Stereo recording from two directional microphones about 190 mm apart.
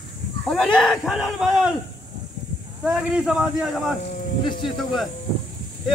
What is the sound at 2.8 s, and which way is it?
Speech, 5° right (ahead or behind).